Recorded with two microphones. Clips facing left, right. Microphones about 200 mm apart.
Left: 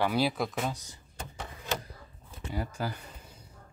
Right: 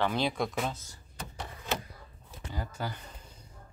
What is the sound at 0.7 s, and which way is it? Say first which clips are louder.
Speech: left 2 dB; 15° left (ahead or behind).